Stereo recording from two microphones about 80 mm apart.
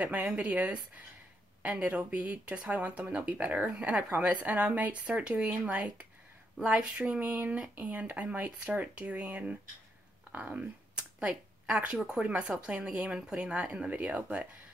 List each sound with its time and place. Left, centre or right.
0.0 s speech: centre